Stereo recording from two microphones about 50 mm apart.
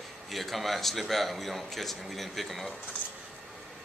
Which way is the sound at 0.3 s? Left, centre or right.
Centre.